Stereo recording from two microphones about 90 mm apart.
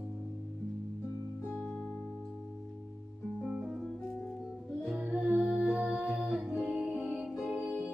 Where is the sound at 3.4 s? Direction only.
10° right (ahead or behind).